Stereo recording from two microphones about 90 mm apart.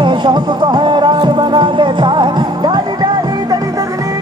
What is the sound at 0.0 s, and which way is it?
Music, 60° right (ahead or behind).